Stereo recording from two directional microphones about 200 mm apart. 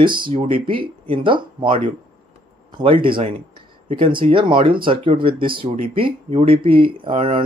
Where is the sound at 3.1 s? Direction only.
25° right (ahead or behind).